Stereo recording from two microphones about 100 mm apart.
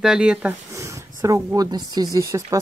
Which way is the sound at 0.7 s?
30° right (ahead or behind).